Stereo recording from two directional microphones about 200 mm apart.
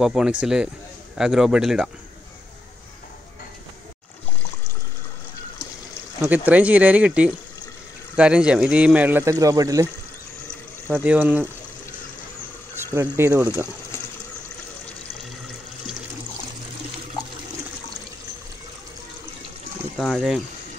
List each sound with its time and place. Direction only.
0.0 s a man's voice: 5° right (ahead or behind)
6.2 s speech: 10° right (ahead or behind)
10.9 s speech: 10° right (ahead or behind)
12.7 s speech: 15° right (ahead or behind)
20.0 s a man's voice: centre (ahead or behind)